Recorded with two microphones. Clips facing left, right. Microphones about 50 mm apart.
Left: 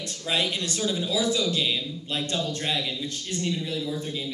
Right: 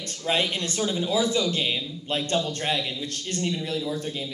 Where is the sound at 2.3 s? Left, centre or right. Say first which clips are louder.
Right 3 dB; right.